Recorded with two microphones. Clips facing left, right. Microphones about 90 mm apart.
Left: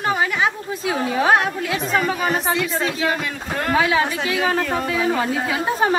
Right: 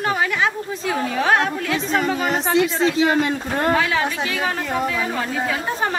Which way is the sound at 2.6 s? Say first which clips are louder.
Right 4 dB; 25° right (ahead or behind).